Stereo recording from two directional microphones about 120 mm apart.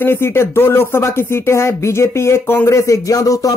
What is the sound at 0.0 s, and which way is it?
Speech, 20° left (ahead or behind).